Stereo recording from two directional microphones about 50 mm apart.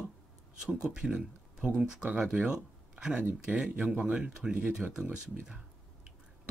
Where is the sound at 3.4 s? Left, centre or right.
Centre.